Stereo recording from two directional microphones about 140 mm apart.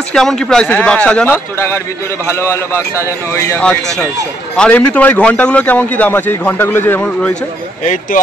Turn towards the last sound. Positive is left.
turn(degrees=15)  # may be behind; listen again after turning